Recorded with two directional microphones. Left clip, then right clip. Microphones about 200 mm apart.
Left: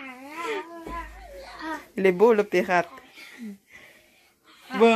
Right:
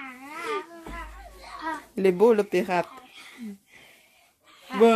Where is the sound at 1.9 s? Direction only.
10° right (ahead or behind).